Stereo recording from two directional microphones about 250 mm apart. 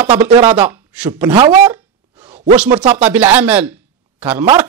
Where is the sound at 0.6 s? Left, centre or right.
Centre.